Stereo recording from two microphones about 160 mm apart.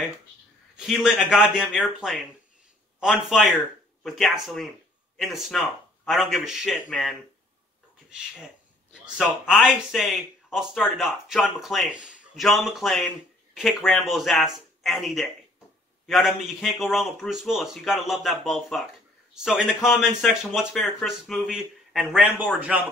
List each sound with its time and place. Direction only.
1.0 s speech: 5° right (ahead or behind)
8.9 s speech: 5° right (ahead or behind)